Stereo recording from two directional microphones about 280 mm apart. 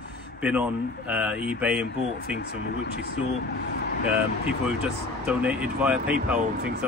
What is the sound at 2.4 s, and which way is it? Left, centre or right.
Speech, left.